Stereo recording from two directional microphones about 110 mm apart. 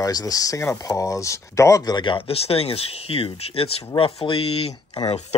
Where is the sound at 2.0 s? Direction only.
50° left (ahead or behind).